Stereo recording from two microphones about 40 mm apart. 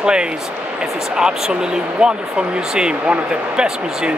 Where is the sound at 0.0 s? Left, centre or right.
Right.